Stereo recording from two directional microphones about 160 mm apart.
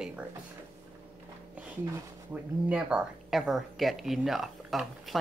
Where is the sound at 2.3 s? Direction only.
10° right (ahead or behind).